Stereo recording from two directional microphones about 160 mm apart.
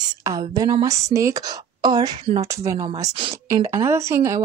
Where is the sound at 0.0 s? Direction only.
25° right (ahead or behind).